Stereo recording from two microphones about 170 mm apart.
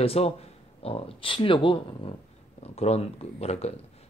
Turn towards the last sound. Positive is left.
turn(degrees=40)  # may be behind; listen again after turning